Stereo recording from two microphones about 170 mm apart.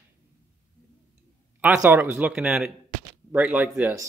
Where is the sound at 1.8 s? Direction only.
10° right (ahead or behind).